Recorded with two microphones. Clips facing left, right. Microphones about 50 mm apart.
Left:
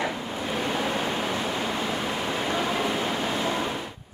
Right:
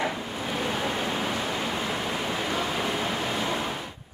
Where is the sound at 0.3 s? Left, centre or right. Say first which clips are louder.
Left 1 dB; centre.